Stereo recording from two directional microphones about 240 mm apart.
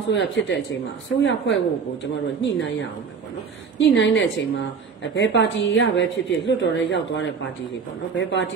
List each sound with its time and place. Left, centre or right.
0.1 s a woman's voice: left
3.7 s a woman's voice: left